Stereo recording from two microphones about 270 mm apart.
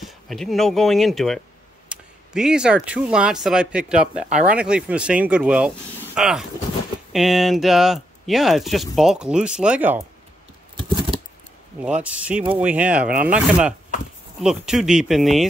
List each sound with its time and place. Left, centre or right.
0.0 s speech: centre
10.8 s a sound: centre
11.8 s speech: centre